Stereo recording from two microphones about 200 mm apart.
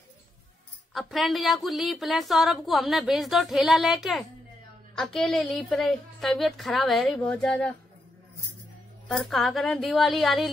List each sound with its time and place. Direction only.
0.9 s a woman's voice: centre (ahead or behind)
9.1 s a woman's voice: centre (ahead or behind)